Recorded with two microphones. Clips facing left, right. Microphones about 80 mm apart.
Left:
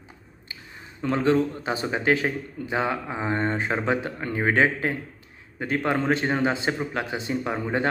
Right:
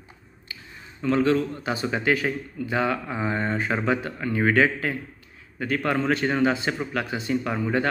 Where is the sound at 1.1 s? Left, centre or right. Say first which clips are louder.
Even; left.